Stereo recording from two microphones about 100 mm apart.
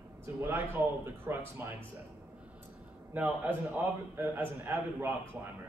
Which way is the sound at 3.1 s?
20° right (ahead or behind).